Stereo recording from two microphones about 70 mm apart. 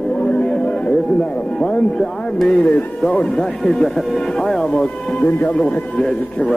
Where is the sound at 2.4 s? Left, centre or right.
Centre.